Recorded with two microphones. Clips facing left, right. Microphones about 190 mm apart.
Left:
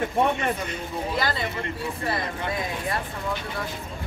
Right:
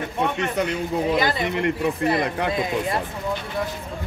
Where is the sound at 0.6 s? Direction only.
80° right.